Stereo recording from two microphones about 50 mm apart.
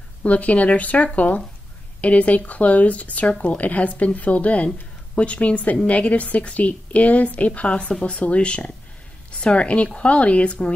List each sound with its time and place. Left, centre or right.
0.2 s a woman's voice: left